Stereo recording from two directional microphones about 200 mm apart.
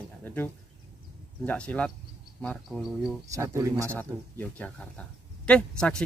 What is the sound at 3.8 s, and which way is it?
Speech, 10° left (ahead or behind).